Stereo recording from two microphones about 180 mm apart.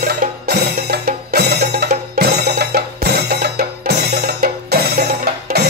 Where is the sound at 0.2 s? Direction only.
55° right (ahead or behind).